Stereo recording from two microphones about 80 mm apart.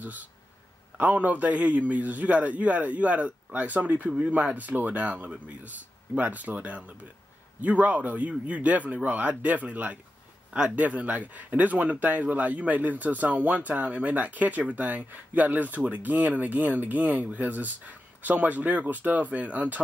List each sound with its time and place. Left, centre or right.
0.0 s speech: right